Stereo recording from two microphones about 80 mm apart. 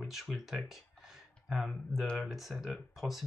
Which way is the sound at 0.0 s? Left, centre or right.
Centre.